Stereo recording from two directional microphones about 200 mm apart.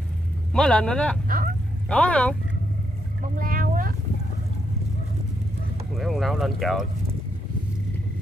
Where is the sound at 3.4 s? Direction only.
45° right (ahead or behind).